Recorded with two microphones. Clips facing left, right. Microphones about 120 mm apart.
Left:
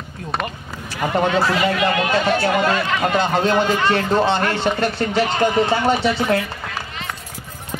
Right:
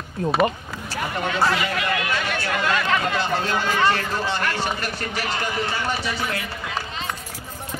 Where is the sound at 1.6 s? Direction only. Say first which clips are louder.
Left 6 dB; 25° left (ahead or behind).